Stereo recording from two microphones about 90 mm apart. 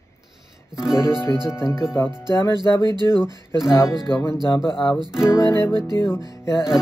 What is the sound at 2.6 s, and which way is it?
Speech, 40° left (ahead or behind).